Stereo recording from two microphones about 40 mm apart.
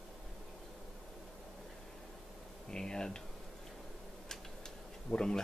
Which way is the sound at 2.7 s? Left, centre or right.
Centre.